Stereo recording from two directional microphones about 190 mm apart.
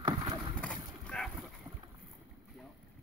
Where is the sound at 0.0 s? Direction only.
25° right (ahead or behind).